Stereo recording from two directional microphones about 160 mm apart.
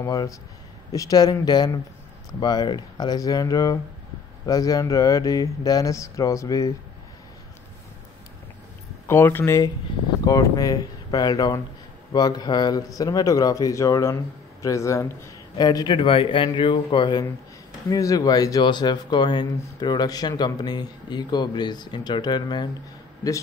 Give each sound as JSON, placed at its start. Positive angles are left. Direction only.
{"t": 0.0, "sound": "speech", "side_deg": 20}
{"t": 9.0, "sound": "a man's voice", "side_deg": 15}